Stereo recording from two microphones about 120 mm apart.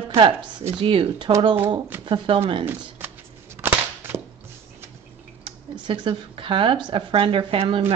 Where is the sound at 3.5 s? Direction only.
20° right (ahead or behind).